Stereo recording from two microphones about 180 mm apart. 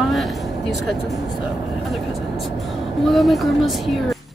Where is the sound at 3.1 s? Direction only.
Centre (ahead or behind).